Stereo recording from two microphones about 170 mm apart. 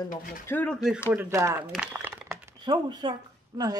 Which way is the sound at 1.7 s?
10° right (ahead or behind).